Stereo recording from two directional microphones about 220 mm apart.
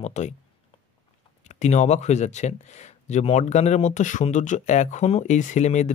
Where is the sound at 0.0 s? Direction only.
30° left (ahead or behind).